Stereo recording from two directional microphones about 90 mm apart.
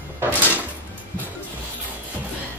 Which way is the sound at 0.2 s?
20° right (ahead or behind).